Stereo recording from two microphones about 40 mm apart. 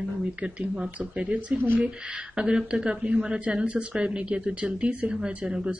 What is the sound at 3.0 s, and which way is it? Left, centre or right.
Speech, right.